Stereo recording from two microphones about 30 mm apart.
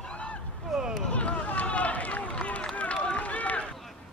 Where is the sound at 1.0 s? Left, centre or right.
Left.